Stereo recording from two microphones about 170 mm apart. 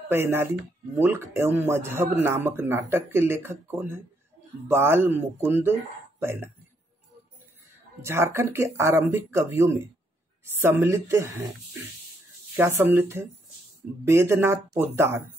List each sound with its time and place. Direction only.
0.1 s speech: 15° right (ahead or behind)
8.0 s speech: 15° right (ahead or behind)
12.5 s speech: 15° right (ahead or behind)